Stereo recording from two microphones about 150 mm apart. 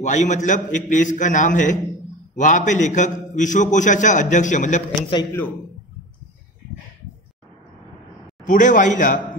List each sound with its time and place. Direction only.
0.0 s a man's voice: 55° left (ahead or behind)
8.5 s a man's voice: 60° left (ahead or behind)